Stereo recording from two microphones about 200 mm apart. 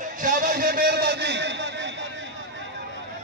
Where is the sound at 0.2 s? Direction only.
40° right (ahead or behind); by 1.9 s 60° right (ahead or behind).